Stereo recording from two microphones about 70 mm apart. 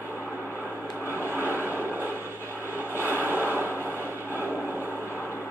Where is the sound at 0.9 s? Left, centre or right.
Right.